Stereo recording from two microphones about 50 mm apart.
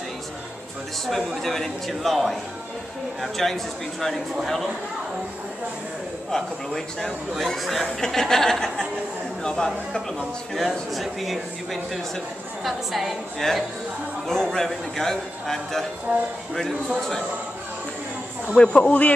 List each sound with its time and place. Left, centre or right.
1.0 s speech: centre
6.3 s a man's voice: centre
10.5 s a man's voice: centre
16.1 s speech: right
18.6 s a man's voice: centre
18.9 s a man's voice: left